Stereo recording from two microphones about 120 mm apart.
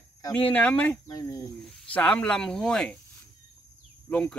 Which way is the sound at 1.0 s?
30° left (ahead or behind).